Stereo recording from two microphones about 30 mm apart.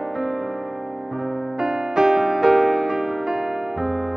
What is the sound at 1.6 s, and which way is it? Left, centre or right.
Music, centre.